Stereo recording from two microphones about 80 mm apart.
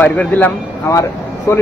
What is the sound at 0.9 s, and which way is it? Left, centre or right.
Speech, left.